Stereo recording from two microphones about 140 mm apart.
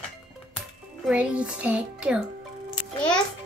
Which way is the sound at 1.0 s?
10° right (ahead or behind).